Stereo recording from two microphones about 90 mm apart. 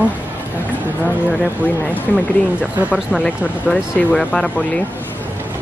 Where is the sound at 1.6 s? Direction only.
20° left (ahead or behind).